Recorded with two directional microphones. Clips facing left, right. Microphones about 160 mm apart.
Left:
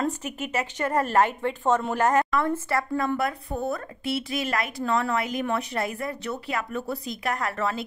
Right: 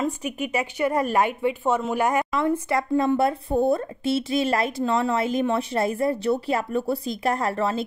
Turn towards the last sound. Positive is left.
turn(degrees=-30)  # may be behind; listen again after turning